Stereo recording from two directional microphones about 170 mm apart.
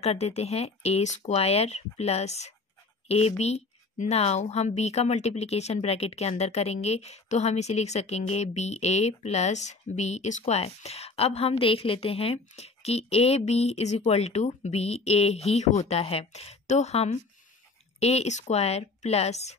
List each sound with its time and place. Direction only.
0.0 s speech: 40° left (ahead or behind)